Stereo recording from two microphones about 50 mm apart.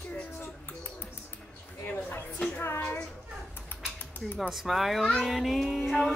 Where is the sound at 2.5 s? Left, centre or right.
Left.